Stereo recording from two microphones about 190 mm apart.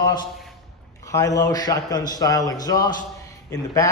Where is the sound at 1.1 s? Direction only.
20° left (ahead or behind).